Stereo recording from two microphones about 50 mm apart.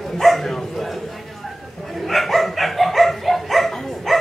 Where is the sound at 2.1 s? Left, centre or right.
Centre.